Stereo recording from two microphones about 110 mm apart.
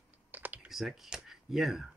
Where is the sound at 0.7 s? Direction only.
Centre (ahead or behind).